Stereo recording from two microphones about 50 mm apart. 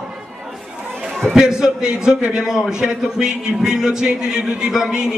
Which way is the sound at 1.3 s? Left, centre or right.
Centre.